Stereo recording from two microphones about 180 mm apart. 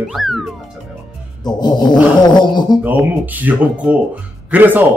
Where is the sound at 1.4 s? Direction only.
25° left (ahead or behind).